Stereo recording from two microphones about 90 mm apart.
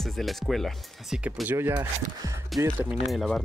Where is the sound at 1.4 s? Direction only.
25° right (ahead or behind).